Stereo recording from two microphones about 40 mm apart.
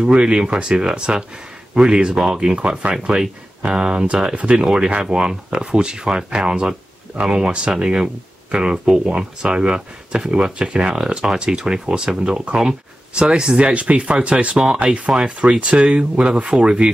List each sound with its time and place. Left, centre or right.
0.0 s speech: right
2.6 s speech: right
14.6 s speech: right